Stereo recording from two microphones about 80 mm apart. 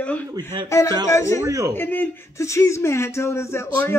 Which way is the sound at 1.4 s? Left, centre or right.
Right.